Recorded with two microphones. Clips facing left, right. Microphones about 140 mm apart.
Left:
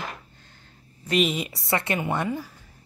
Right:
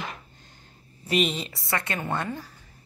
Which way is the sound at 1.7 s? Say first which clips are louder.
Left 4 dB; 25° left (ahead or behind).